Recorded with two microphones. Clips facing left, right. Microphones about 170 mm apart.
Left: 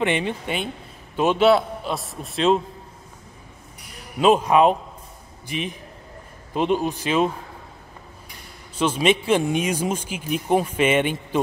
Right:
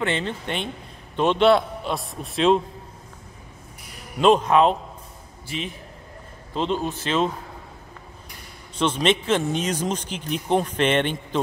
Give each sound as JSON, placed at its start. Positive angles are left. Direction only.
{"t": 0.0, "sound": "a man's voice", "side_deg": 15}
{"t": 4.2, "sound": "speech", "side_deg": 10}
{"t": 8.7, "sound": "speech", "side_deg": 5}